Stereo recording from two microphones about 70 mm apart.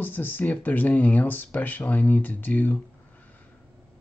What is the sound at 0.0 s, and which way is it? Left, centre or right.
Speech, left.